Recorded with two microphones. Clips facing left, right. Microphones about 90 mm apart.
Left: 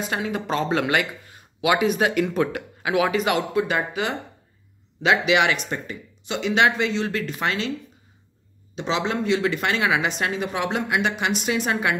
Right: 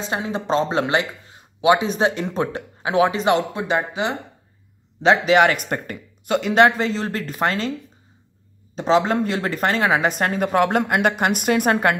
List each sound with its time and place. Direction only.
0.0 s speech: 25° right (ahead or behind)
5.0 s speech: 40° right (ahead or behind)
8.7 s speech: 40° right (ahead or behind)